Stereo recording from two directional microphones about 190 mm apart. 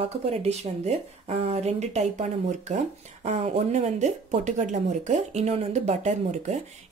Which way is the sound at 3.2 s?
35° right (ahead or behind).